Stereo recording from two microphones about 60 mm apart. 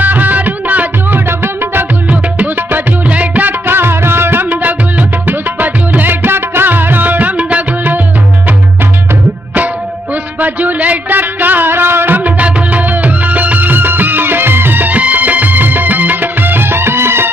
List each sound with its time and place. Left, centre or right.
0.0 s music: right
10.4 s music: right
12.2 s music: right